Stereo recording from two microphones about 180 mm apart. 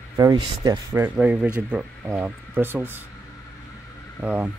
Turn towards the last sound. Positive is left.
turn(degrees=-5)  # may be behind; listen again after turning